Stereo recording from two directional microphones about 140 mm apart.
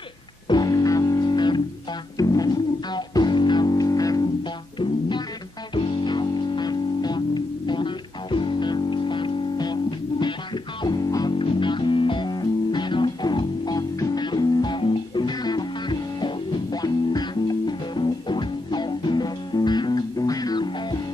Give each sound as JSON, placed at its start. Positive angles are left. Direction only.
{"t": 0.5, "sound": "music", "side_deg": 30}
{"t": 5.8, "sound": "music", "side_deg": 40}